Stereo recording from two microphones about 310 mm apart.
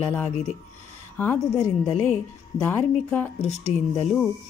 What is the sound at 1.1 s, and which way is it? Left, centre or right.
A woman's voice, centre.